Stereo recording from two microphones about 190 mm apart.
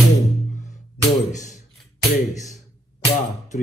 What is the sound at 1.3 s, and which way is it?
Speech, 40° left (ahead or behind).